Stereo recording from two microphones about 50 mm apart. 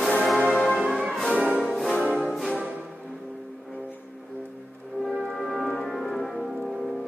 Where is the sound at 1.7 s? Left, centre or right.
Centre.